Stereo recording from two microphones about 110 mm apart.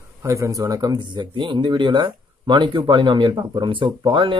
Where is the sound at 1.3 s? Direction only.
45° right (ahead or behind).